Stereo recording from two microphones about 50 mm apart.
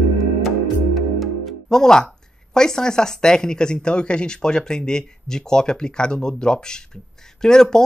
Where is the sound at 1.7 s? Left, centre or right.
Centre.